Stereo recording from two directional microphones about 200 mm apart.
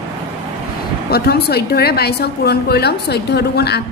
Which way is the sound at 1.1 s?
50° left (ahead or behind).